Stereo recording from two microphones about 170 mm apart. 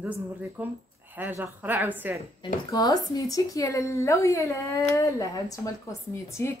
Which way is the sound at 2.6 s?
25° left (ahead or behind).